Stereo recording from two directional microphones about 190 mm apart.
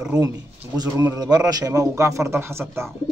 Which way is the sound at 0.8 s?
20° right (ahead or behind).